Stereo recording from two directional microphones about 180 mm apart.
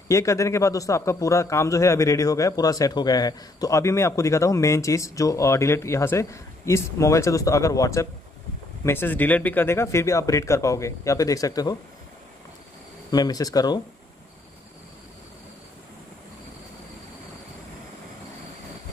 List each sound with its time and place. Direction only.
0.1 s speech: 15° left (ahead or behind)
13.1 s speech: 20° left (ahead or behind)